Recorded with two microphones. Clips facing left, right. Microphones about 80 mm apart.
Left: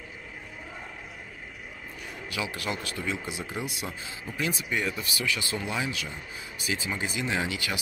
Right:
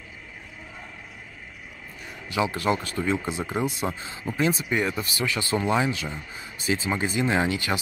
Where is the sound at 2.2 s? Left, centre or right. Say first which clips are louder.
Right 9 dB; right.